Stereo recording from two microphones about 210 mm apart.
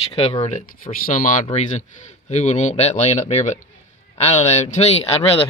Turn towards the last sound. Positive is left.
turn(degrees=30)  # may be behind; listen again after turning